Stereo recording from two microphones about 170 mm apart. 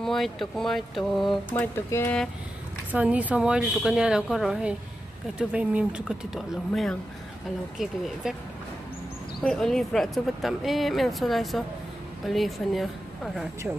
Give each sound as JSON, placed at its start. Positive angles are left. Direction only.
{"t": 0.0, "sound": "speech", "side_deg": 0}
{"t": 1.8, "sound": "speech", "side_deg": 15}
{"t": 2.9, "sound": "speech", "side_deg": -10}
{"t": 9.4, "sound": "speech", "side_deg": 5}